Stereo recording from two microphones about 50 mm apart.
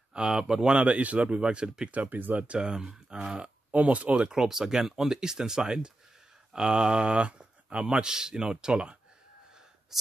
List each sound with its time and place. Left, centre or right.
0.1 s speech: centre
1.9 s speech: right
2.4 s speech: centre
3.7 s speech: right
4.3 s speech: centre